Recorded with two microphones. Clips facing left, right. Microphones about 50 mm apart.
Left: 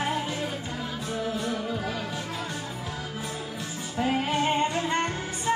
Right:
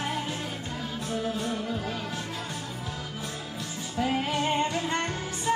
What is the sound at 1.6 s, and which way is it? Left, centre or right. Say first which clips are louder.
Music: left 1 dB; left.